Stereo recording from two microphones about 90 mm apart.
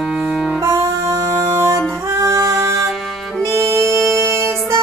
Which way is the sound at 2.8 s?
Centre (ahead or behind).